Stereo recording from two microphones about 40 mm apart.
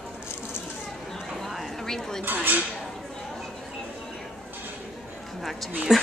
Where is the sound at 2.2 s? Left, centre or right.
Right.